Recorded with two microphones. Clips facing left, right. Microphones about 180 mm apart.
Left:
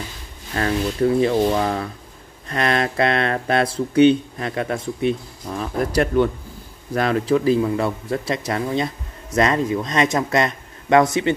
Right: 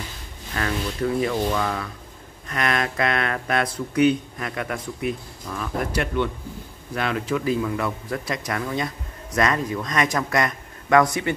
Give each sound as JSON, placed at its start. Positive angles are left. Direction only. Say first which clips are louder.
{"t": 0.6, "sound": "speech", "louder": "left 6 dB", "side_deg": 30}